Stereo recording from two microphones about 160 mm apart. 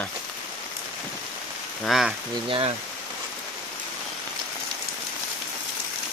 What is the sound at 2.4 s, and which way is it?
Speech, 30° right (ahead or behind).